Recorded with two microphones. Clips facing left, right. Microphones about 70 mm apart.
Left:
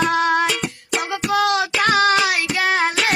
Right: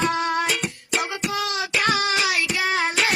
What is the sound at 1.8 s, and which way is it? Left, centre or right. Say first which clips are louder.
Child singing: left 6 dB; left.